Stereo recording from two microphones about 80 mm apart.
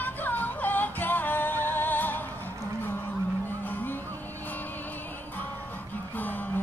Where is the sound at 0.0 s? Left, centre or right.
Left.